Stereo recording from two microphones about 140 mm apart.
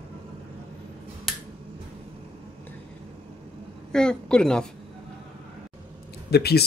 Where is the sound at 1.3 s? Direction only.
Centre (ahead or behind).